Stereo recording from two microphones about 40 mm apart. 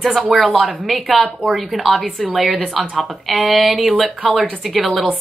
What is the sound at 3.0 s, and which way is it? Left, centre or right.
Speech, centre.